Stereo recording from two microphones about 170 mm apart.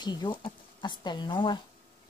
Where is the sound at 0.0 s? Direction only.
25° left (ahead or behind).